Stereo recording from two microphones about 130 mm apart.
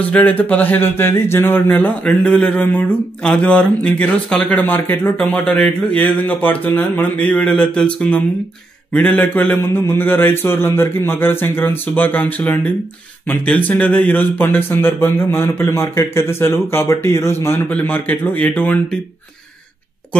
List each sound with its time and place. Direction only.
0.0 s speech: 10° left (ahead or behind)